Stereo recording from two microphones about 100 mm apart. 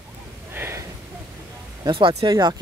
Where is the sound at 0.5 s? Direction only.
25° right (ahead or behind).